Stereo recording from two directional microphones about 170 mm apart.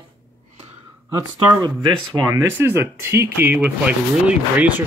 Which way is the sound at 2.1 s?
20° right (ahead or behind).